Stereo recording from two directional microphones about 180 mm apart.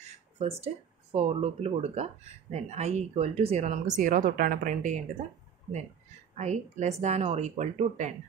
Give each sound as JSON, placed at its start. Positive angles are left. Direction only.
{"t": 0.0, "sound": "a sound", "side_deg": -35}
{"t": 1.1, "sound": "speech", "side_deg": -35}
{"t": 6.3, "sound": "speech", "side_deg": -40}